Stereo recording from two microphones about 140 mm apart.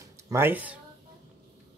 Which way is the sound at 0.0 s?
20° right (ahead or behind).